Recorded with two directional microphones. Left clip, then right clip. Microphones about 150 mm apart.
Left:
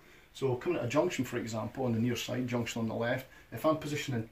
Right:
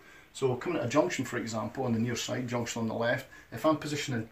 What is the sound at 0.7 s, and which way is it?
Speech, 20° left (ahead or behind).